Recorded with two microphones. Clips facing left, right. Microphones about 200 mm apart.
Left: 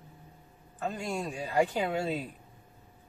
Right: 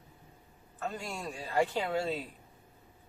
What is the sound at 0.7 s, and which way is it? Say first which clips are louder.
A woman's voice: left 5 dB; 20° left (ahead or behind).